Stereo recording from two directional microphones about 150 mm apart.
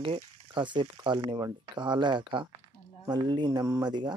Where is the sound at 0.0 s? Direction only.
35° right (ahead or behind).